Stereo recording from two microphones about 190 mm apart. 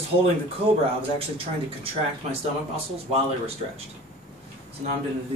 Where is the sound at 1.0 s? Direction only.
30° right (ahead or behind).